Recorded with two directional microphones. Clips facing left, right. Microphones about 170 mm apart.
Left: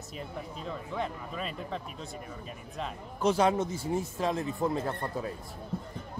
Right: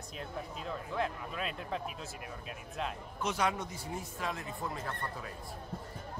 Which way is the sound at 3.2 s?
30° left (ahead or behind).